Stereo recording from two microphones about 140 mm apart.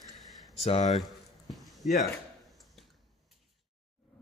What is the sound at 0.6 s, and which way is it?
Speech, 50° left (ahead or behind).